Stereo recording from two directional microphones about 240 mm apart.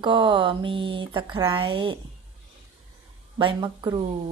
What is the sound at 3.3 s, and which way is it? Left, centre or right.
Speech, right.